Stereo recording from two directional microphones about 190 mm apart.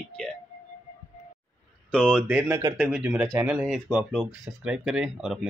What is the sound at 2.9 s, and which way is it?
Speech, 5° right (ahead or behind).